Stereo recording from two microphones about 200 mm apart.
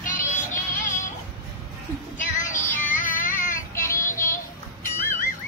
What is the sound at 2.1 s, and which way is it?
Music, 40° left (ahead or behind).